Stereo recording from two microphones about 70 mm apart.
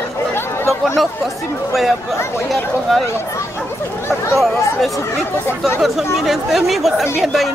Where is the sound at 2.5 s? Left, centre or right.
Centre.